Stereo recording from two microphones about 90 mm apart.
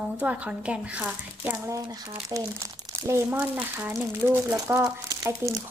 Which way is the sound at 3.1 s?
30° right (ahead or behind).